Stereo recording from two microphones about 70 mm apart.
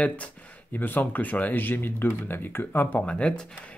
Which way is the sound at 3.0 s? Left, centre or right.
Centre.